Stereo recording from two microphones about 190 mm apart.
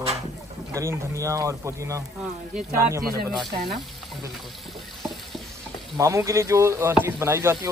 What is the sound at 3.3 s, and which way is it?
Speech, centre (ahead or behind).